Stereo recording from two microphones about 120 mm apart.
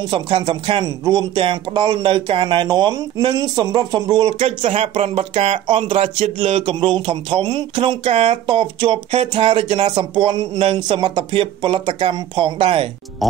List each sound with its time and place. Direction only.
0.1 s speech: 40° right (ahead or behind); by 6.3 s 65° right (ahead or behind)
6.4 s speech: 50° right (ahead or behind)
8.0 s speech: 60° right (ahead or behind)
8.5 s speech: 45° right (ahead or behind)
13.2 s speech: centre (ahead or behind)